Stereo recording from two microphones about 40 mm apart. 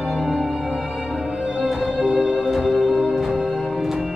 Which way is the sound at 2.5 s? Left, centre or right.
Centre.